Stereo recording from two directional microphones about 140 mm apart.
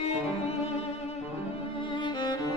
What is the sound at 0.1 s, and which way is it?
Music, 45° left (ahead or behind).